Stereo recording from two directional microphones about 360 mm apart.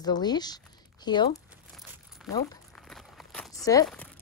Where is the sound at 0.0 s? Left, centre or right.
Centre.